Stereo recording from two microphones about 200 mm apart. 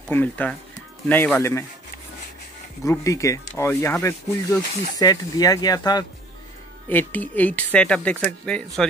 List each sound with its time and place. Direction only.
0.1 s speech: 10° left (ahead or behind)
2.8 s speech: 15° left (ahead or behind)
6.9 s speech: 10° left (ahead or behind)